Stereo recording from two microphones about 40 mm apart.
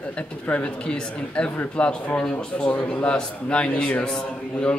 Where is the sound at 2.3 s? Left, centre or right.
Left.